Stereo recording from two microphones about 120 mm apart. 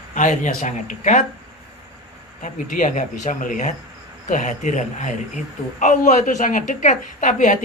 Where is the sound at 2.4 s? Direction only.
90° left.